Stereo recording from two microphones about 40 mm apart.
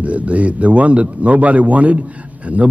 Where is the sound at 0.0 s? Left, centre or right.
Right.